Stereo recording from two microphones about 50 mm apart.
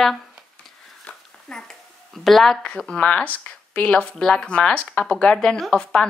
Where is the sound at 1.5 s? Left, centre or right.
Centre.